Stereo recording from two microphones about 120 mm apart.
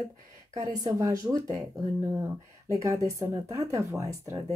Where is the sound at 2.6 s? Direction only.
25° right (ahead or behind).